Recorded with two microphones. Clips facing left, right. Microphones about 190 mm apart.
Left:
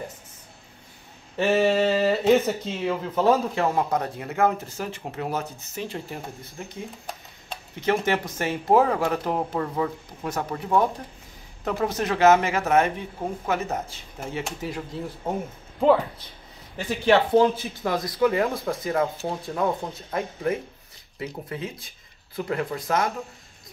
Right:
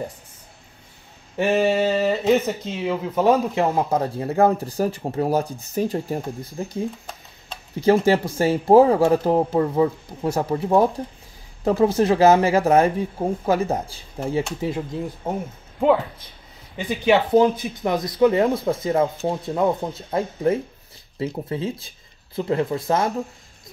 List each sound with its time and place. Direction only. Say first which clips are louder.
1.6 s speech: right 1 dB; 10° right (ahead or behind)
3.3 s speech: right 3 dB; 20° right (ahead or behind); by 6.8 s 35° right (ahead or behind)
7.8 s speech: right 7 dB; 35° right (ahead or behind)
17.0 s speech: right 2 dB; 5° right (ahead or behind)
17.4 s speech: right 3 dB; 20° right (ahead or behind)